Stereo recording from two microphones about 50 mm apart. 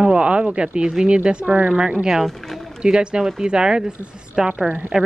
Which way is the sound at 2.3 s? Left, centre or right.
Centre.